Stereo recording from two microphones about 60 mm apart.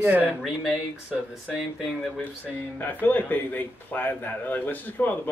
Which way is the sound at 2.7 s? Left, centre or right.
Left.